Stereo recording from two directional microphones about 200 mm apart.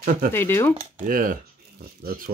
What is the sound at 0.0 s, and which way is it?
Speech, 45° right (ahead or behind).